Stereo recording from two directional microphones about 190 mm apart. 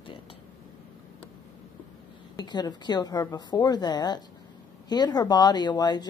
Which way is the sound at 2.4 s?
20° left (ahead or behind).